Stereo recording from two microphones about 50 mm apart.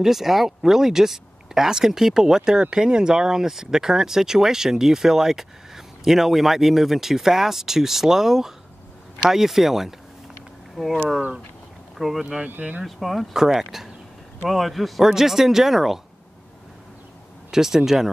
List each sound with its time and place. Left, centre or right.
0.0 s a man's voice: centre
12.0 s a man's voice: centre
12.4 s speech: right
12.8 s a man's voice: centre
17.5 s speech: centre